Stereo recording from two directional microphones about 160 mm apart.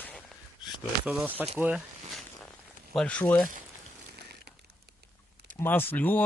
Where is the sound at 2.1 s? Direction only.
Centre (ahead or behind).